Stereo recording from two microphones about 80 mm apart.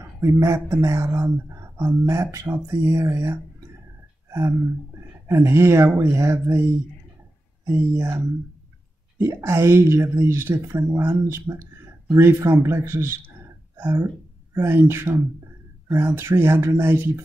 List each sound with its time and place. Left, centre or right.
0.2 s speech: right
4.3 s a sound: right
5.3 s speech: right
7.7 s speech: right
9.2 s speech: right